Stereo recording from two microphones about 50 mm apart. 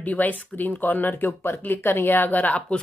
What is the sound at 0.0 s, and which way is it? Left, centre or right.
A woman's voice, left.